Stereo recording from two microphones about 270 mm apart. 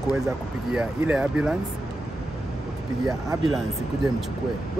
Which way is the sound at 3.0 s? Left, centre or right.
Centre.